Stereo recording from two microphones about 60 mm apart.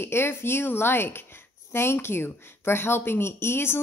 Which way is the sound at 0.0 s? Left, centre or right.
Left.